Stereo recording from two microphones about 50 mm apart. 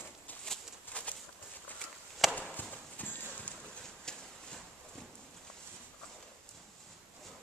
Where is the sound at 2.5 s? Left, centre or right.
Left.